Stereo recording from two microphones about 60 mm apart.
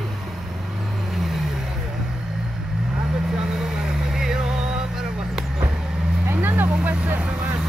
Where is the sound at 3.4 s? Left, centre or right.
Centre.